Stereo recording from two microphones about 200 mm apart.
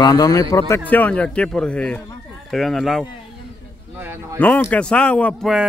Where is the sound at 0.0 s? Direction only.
20° left (ahead or behind); by 4.4 s 10° right (ahead or behind).